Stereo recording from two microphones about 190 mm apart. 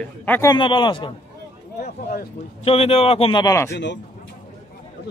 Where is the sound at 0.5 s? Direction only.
25° left (ahead or behind).